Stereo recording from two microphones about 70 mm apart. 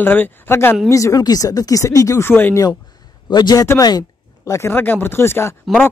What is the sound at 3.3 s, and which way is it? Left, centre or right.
Speech, left.